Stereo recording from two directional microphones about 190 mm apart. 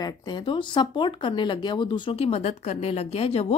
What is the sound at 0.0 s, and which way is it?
Speech, 20° left (ahead or behind).